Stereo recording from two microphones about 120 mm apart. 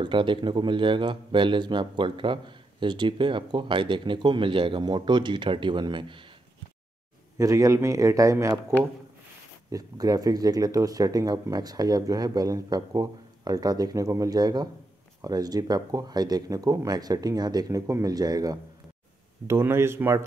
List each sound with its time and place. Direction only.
0.0 s speech: 45° right (ahead or behind)
7.3 s a man's voice: 25° right (ahead or behind)
19.4 s a man's voice: 20° right (ahead or behind)